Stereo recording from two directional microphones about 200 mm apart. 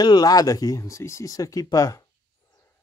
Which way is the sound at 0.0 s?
20° left (ahead or behind).